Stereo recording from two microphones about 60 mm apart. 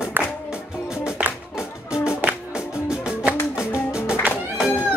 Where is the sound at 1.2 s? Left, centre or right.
Right.